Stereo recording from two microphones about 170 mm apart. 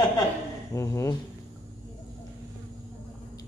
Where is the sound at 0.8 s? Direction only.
20° left (ahead or behind).